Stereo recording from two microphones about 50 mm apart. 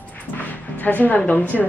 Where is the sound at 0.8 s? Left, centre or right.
Left.